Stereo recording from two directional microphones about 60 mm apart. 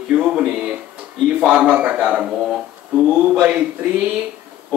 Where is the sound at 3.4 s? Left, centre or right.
Right.